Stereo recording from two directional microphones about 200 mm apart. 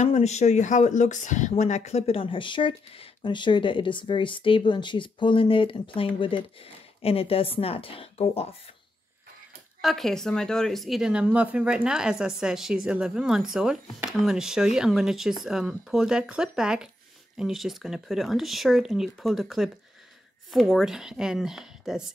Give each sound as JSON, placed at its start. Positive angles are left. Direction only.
{"t": 0.0, "sound": "speech", "side_deg": 35}
{"t": 9.8, "sound": "speech", "side_deg": 0}